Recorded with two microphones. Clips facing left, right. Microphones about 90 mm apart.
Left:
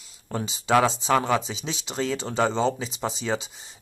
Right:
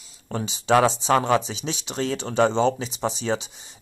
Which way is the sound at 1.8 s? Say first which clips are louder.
Even; 15° left (ahead or behind).